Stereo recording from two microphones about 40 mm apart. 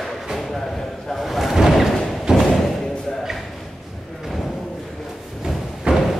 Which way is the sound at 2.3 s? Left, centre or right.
Centre.